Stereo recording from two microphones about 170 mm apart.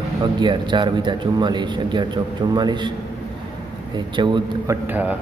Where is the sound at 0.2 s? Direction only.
25° right (ahead or behind).